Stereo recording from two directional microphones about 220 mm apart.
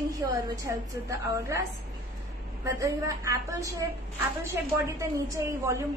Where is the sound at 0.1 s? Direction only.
15° right (ahead or behind).